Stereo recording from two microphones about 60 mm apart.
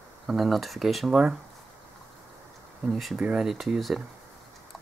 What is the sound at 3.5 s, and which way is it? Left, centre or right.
Speech, centre.